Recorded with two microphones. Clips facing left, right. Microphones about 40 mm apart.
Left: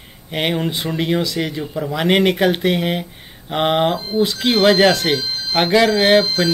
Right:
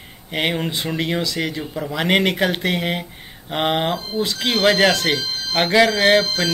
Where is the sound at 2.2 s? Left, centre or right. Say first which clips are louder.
Left 4 dB; centre.